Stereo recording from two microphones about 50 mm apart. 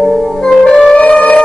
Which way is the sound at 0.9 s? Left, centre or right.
Left.